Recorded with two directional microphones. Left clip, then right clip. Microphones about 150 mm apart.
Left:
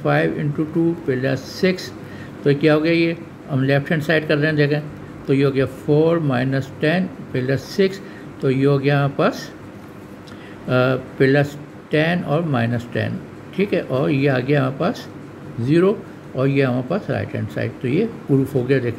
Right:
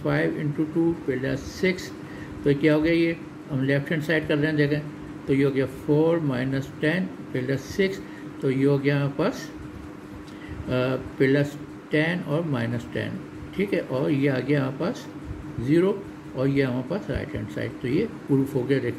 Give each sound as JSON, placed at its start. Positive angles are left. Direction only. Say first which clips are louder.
{"t": 0.0, "sound": "speech", "louder": "left 6 dB", "side_deg": 30}
{"t": 10.7, "sound": "speech", "louder": "left 8 dB", "side_deg": 30}